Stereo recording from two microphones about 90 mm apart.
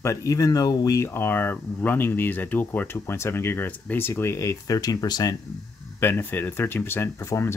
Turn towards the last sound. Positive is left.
turn(degrees=30)  # may be behind; listen again after turning